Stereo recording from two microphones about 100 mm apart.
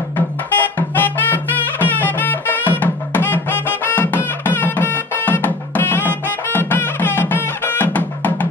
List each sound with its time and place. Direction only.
0.6 s music: 20° left (ahead or behind)